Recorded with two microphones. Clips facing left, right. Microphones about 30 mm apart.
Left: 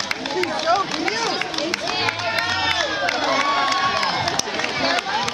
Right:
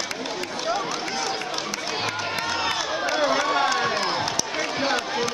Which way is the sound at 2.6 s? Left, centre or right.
Left.